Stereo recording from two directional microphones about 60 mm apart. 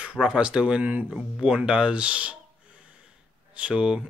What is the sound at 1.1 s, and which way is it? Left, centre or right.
Speech, centre.